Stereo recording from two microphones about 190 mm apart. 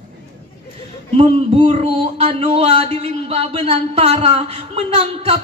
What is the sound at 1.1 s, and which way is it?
Speech, 30° right (ahead or behind).